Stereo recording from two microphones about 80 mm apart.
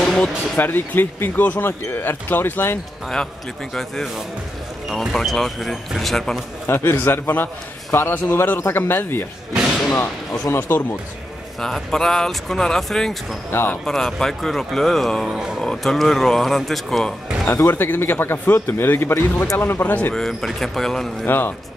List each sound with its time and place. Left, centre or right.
0.0 s music: centre
0.6 s speech: left
3.7 s speech: centre
6.7 s speech: left
10.5 s speech: left
11.6 s speech: centre
13.5 s speech: left
13.8 s speech: centre
15.2 s speech: centre
15.6 s speech: centre
17.5 s speech: left
17.7 s speech: left
20.2 s speech: centre
21.3 s speech: left